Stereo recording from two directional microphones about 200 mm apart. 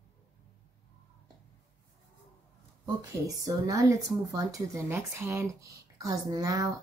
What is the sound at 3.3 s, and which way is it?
A woman's voice, 15° right (ahead or behind).